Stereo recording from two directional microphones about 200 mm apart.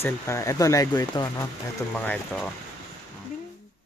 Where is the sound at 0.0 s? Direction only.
15° left (ahead or behind).